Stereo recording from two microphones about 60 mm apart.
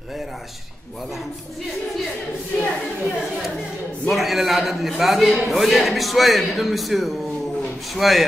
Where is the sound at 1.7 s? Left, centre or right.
Centre.